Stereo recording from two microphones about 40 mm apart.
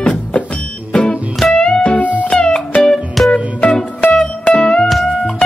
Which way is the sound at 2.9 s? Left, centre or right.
Centre.